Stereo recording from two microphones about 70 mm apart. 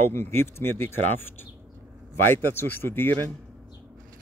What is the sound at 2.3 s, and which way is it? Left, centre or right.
Speech, left.